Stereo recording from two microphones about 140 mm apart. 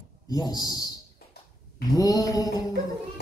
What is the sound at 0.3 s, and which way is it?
Speech, 25° left (ahead or behind).